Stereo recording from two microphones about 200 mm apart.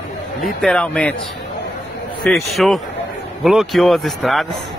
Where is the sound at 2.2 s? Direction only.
Centre (ahead or behind).